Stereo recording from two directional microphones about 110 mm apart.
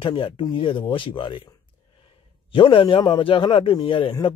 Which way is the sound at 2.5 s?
50° left (ahead or behind).